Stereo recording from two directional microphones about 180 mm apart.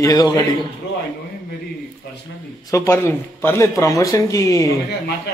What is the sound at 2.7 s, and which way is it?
A man's voice, 15° left (ahead or behind).